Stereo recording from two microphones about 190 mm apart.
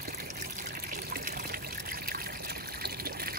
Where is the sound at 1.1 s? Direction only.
50° right (ahead or behind).